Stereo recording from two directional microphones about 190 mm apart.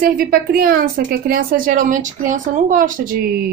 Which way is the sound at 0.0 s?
50° right (ahead or behind).